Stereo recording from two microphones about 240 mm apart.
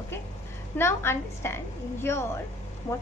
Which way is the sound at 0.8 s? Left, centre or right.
Centre.